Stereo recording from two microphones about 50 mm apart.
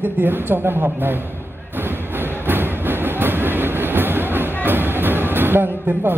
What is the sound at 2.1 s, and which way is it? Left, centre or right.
Train, right.